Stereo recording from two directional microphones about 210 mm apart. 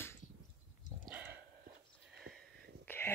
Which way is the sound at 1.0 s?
10° right (ahead or behind).